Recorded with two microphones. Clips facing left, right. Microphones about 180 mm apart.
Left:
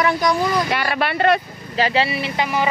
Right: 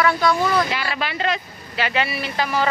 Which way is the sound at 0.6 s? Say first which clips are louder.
Left 5 dB; 60° left (ahead or behind).